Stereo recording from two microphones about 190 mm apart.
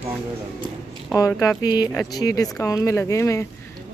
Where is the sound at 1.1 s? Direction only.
15° left (ahead or behind).